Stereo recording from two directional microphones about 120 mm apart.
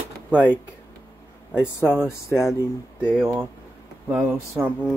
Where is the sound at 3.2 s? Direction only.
20° right (ahead or behind).